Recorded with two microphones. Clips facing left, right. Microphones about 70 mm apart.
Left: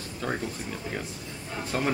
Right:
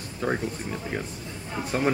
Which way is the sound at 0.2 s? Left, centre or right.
Right.